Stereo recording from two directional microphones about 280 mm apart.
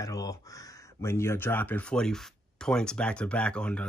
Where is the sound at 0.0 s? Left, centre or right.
Centre.